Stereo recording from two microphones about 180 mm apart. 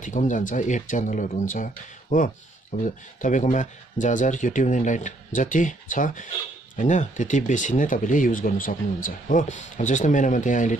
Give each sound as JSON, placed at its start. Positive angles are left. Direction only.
{"t": 0.0, "sound": "speech", "side_deg": 45}